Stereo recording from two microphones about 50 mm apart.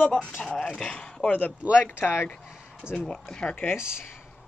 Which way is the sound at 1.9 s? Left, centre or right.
Left.